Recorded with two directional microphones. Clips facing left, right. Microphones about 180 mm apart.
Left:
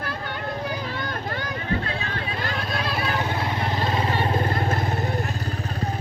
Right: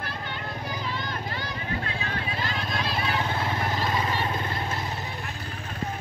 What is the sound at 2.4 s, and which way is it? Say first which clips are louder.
Vehicle: left 4 dB; 50° left (ahead or behind).